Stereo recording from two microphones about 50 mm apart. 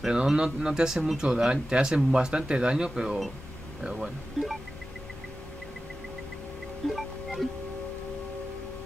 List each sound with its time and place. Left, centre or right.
0.0 s speech: centre
2.0 s speech: centre
2.2 s speech: centre
2.9 s speech: centre
6.9 s music: centre